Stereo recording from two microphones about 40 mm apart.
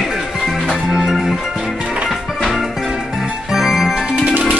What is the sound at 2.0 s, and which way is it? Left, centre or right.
Music, centre.